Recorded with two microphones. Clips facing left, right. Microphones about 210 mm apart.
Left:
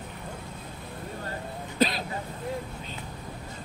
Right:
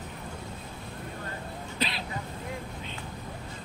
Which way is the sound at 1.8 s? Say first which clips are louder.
Left 9 dB; 45° left (ahead or behind).